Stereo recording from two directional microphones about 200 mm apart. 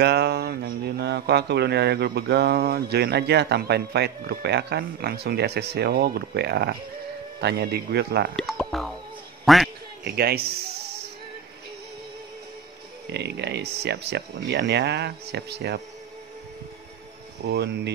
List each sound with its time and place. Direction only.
0.0 s speech: 55° right (ahead or behind)
8.4 s speech: centre (ahead or behind)
9.4 s quack: centre (ahead or behind)
10.0 s speech: 50° right (ahead or behind)
13.0 s speech: 55° right (ahead or behind)
17.5 s speech: 55° right (ahead or behind)